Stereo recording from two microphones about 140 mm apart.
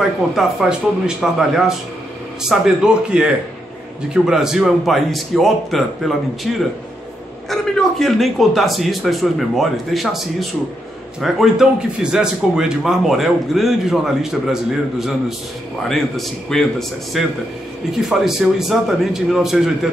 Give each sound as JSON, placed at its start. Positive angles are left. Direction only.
{"t": 0.4, "sound": "a man's voice", "side_deg": -5}